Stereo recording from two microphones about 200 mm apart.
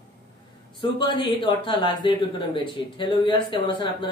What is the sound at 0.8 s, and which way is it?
A man's voice, 20° left (ahead or behind).